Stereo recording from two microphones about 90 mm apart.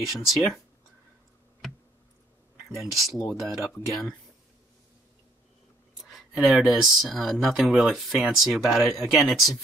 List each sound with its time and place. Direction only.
0.0 s speech: centre (ahead or behind)
2.8 s speech: centre (ahead or behind)
6.1 s speech: centre (ahead or behind)